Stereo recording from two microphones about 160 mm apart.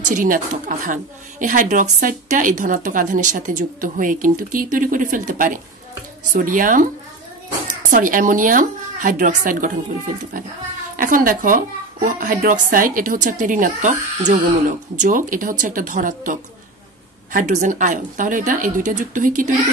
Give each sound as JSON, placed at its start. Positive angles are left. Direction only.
{"t": 0.0, "sound": "a woman's voice", "side_deg": -55}
{"t": 11.0, "sound": "a woman's voice", "side_deg": -60}